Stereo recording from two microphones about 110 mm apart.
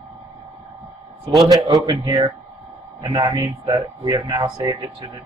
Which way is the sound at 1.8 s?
35° right (ahead or behind).